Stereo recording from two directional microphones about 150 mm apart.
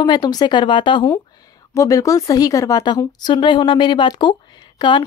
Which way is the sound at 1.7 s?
20° left (ahead or behind).